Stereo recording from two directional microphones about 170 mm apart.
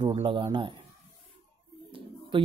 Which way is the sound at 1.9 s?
30° right (ahead or behind).